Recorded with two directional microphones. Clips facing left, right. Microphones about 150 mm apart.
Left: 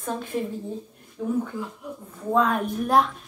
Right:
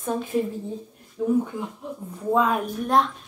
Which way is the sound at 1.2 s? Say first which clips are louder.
Right 5 dB; 20° right (ahead or behind).